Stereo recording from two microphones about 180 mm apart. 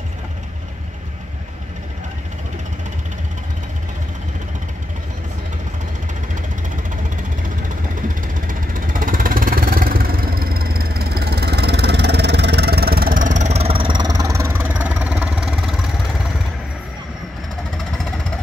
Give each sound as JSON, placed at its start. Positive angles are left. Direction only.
{"t": 8.5, "sound": "vehicle", "side_deg": -50}